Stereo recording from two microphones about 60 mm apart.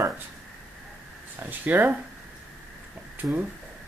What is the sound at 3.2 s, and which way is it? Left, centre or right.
Speech, right.